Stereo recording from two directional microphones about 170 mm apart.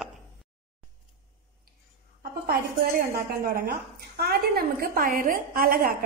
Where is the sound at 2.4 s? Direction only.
60° right (ahead or behind).